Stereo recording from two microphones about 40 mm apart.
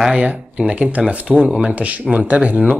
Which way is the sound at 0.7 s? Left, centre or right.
Right.